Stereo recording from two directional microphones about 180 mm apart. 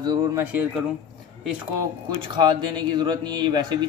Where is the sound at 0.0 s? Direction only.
20° right (ahead or behind).